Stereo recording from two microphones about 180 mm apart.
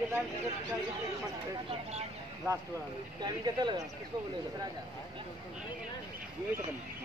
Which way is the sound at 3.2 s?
25° right (ahead or behind).